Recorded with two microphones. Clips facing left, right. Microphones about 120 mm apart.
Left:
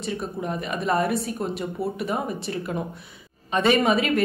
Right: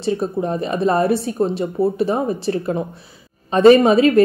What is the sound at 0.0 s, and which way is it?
Speech, 30° right (ahead or behind).